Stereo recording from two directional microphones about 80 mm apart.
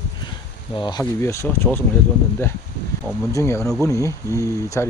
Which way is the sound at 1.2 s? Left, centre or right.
Left.